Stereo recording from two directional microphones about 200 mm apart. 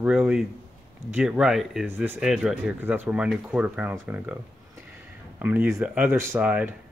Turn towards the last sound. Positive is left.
turn(degrees=-5)  # may be behind; listen again after turning